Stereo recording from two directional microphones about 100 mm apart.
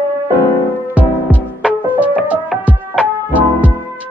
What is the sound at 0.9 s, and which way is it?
Music, 15° right (ahead or behind).